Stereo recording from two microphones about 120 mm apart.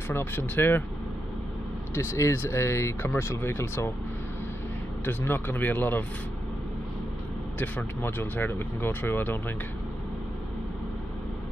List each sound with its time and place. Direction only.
0.1 s speech: 15° left (ahead or behind)
2.0 s speech: 25° left (ahead or behind)
5.0 s speech: 20° left (ahead or behind)
7.5 s speech: 15° left (ahead or behind)